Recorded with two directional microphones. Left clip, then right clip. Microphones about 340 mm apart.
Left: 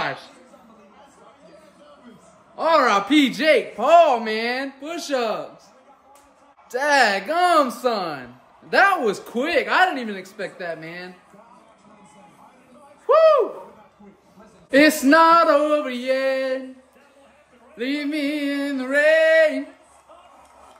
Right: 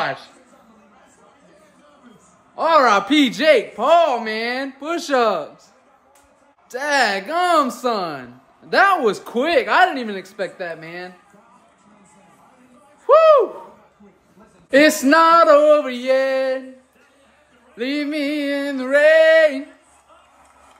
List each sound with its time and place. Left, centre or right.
0.0 s a man's voice: centre
2.5 s speech: centre
4.8 s a man's voice: right
6.7 s speech: centre
13.0 s a sound: centre
14.7 s speech: centre
17.7 s speech: centre